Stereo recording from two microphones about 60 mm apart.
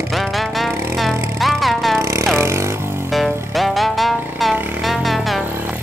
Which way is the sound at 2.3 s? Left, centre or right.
Right.